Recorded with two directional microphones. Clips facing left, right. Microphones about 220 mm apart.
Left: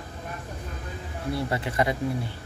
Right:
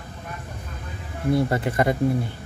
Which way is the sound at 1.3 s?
50° right (ahead or behind).